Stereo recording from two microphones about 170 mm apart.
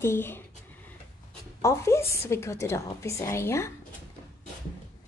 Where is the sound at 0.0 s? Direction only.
15° left (ahead or behind).